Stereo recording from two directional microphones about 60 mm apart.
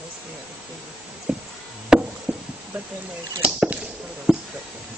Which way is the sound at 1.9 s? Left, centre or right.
Centre.